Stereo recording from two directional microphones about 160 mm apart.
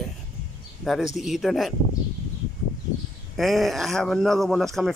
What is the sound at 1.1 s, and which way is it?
Speech, centre (ahead or behind).